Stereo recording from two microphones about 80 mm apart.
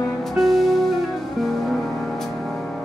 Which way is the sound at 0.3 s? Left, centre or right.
Centre.